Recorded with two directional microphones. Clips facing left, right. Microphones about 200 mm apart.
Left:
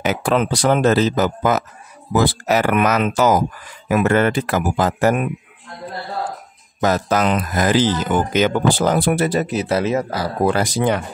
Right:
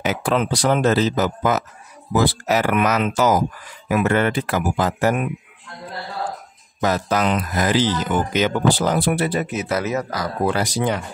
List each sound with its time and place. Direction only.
0.0 s speech: 55° left (ahead or behind)
6.8 s speech: 45° left (ahead or behind); by 10.3 s 30° left (ahead or behind)
10.4 s speech: 50° left (ahead or behind)